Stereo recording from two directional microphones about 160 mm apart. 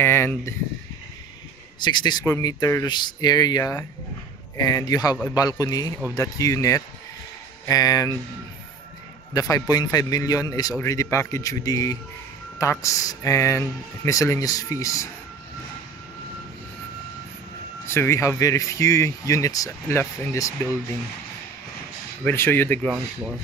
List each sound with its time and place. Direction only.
0.0 s speech: 15° left (ahead or behind)
1.8 s speech: 30° left (ahead or behind)
9.3 s speech: 20° left (ahead or behind)
17.8 s speech: 15° left (ahead or behind)
22.2 s speech: 15° left (ahead or behind)